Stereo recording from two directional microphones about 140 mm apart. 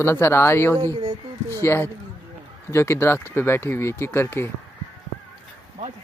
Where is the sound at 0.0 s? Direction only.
15° left (ahead or behind).